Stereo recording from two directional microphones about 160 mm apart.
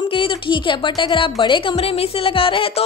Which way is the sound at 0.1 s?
35° left (ahead or behind).